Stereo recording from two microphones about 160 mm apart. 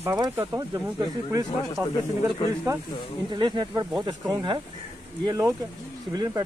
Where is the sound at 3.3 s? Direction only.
25° right (ahead or behind).